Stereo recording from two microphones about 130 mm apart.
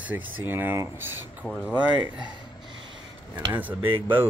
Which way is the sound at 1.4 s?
15° left (ahead or behind).